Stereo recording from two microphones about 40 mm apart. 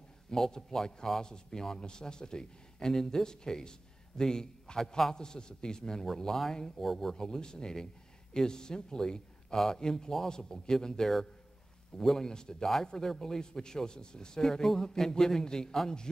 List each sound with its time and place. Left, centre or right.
0.3 s speech: centre
7.2 s a man's voice: centre